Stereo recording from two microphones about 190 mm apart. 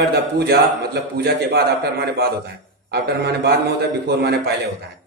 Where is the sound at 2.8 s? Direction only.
60° right (ahead or behind).